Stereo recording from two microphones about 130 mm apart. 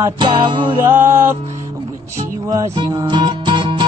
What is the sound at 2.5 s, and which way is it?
Music, 30° right (ahead or behind).